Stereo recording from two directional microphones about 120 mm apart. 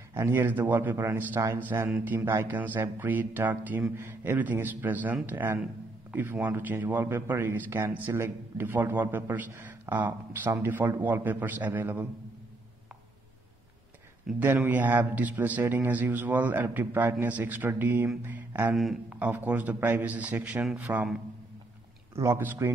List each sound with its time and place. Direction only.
0.1 s a man's voice: 20° right (ahead or behind)
14.4 s a man's voice: 15° right (ahead or behind)
18.8 s a man's voice: centre (ahead or behind)
19.1 s a man's voice: 15° right (ahead or behind)
22.1 s a man's voice: 20° right (ahead or behind)